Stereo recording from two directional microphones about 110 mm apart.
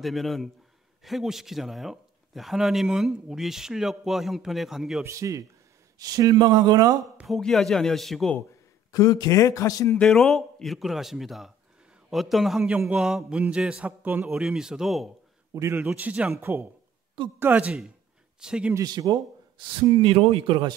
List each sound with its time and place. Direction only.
0.0 s a man's voice: centre (ahead or behind)
5.0 s a man's voice: 30° right (ahead or behind)
7.2 s a man's voice: centre (ahead or behind)
8.9 s speech: 35° left (ahead or behind)
9.9 s a man's voice: 5° left (ahead or behind)
15.5 s a man's voice: 25° right (ahead or behind)
15.8 s speech: 15° right (ahead or behind)
18.8 s speech: 35° right (ahead or behind)
20.0 s speech: 55° right (ahead or behind)